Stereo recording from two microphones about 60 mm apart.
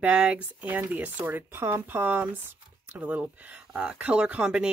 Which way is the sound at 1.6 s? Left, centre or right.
Right.